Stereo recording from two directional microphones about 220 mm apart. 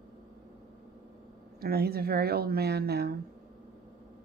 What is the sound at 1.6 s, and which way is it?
Speech, 45° right (ahead or behind).